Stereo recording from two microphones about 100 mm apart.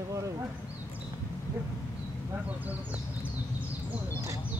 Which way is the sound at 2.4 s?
15° right (ahead or behind).